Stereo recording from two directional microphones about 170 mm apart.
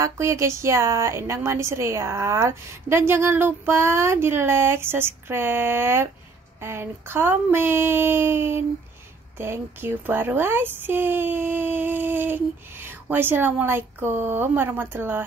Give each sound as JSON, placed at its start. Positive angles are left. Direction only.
{"t": 0.0, "sound": "a woman's voice", "side_deg": -15}